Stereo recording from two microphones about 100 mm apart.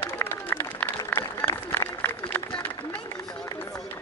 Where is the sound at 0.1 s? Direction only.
20° left (ahead or behind).